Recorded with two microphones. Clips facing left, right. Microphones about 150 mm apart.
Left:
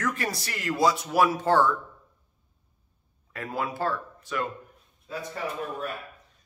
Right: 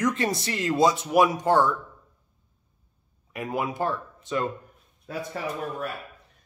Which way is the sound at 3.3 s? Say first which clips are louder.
Right 3 dB; 15° right (ahead or behind).